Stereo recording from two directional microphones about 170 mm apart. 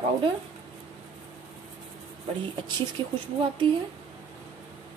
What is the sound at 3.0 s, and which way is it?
Speech, 25° right (ahead or behind).